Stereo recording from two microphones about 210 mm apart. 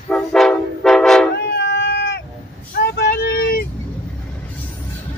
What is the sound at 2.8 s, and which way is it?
Vehicle, 50° left (ahead or behind).